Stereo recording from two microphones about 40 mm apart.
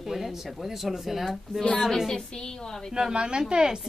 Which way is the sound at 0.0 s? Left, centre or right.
Centre.